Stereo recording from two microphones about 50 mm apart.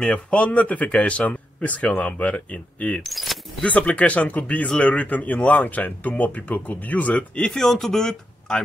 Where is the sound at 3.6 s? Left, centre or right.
Left.